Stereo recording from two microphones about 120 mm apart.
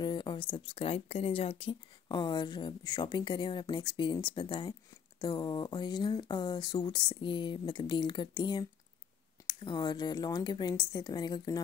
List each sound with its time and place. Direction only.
0.0 s speech: 40° left (ahead or behind)